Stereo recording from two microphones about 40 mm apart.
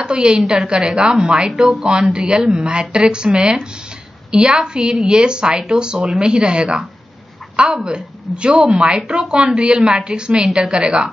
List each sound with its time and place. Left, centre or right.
0.0 s a woman's voice: right
2.0 s a woman's voice: right